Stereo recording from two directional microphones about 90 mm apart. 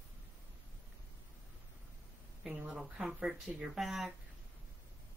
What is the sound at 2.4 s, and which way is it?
Speech, 5° right (ahead or behind).